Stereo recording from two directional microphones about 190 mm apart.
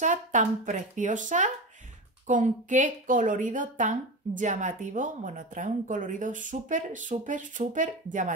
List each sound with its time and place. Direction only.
0.0 s a woman's voice: 40° right (ahead or behind)